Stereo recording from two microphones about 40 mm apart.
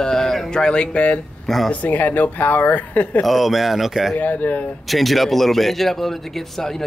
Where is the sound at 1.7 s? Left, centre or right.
Left.